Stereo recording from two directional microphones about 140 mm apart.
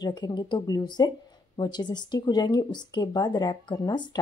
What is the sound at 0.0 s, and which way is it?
Speech, 30° left (ahead or behind).